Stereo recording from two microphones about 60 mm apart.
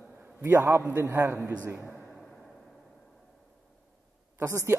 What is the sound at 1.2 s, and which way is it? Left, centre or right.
Speech, right.